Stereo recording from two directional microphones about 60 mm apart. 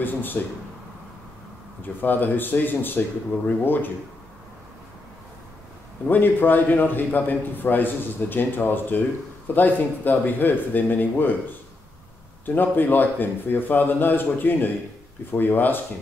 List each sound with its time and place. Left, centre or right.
0.0 s a man's voice: left
1.8 s a man's voice: left
6.0 s a man's voice: left
12.4 s a man's voice: left